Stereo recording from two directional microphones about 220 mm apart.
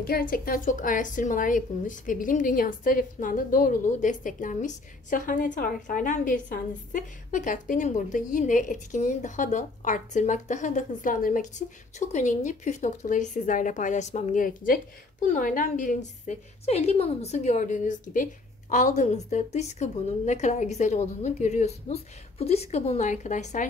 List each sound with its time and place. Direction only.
0.0 s speech: 40° left (ahead or behind)